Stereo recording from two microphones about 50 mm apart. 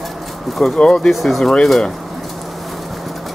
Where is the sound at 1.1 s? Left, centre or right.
Centre.